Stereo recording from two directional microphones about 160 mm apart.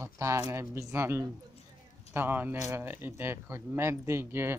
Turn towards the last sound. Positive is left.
turn(degrees=-15)  # may be behind; listen again after turning